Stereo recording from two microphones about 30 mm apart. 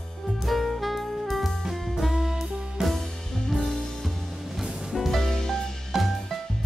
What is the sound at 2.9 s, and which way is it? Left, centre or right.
Music, centre.